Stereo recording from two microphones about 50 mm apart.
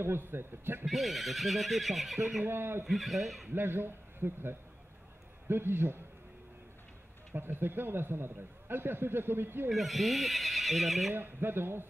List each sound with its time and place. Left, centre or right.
0.0 s a man's voice: right
0.8 s speech: centre
2.4 s a man's voice: right
2.9 s speech: centre
3.5 s a man's voice: right
7.3 s a man's voice: right
9.7 s speech: centre
11.1 s a man's voice: right